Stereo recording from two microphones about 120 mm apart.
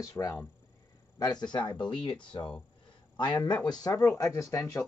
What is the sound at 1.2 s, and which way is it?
Speech, 35° left (ahead or behind).